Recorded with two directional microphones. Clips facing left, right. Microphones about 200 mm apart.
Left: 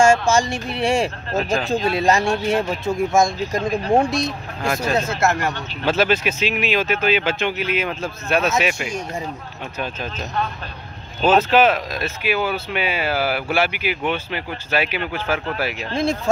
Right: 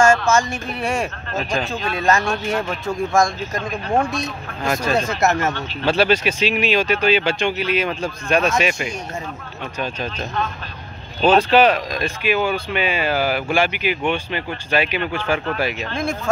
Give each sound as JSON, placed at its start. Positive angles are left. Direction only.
{"t": 0.0, "sound": "a sound", "side_deg": 10}
{"t": 0.3, "sound": "speech", "side_deg": 30}
{"t": 4.6, "sound": "speech", "side_deg": 10}
{"t": 5.2, "sound": "speech", "side_deg": -20}
{"t": 5.5, "sound": "speech", "side_deg": 10}
{"t": 15.9, "sound": "speech", "side_deg": 30}